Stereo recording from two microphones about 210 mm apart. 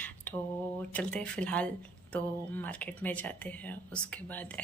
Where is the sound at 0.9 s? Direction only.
5° left (ahead or behind).